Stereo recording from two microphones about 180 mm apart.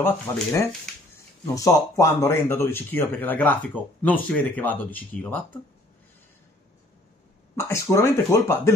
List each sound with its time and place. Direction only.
0.0 s speech: 15° left (ahead or behind)
7.5 s speech: 15° left (ahead or behind)